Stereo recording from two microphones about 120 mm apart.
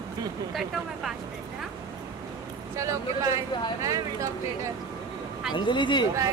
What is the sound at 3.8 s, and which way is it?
Speech, 25° right (ahead or behind).